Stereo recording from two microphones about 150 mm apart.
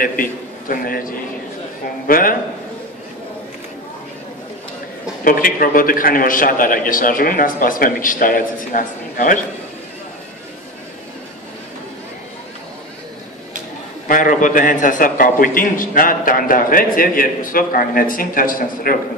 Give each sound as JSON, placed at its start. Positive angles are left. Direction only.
{"t": 0.0, "sound": "a man's voice", "side_deg": 70}
{"t": 5.2, "sound": "a man's voice", "side_deg": 70}
{"t": 14.0, "sound": "a man's voice", "side_deg": 65}